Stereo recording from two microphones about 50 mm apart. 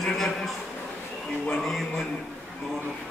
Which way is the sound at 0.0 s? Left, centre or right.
Centre.